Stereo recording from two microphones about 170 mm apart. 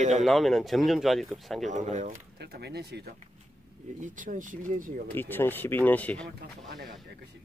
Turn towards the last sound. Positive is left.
turn(degrees=10)  # may be behind; listen again after turning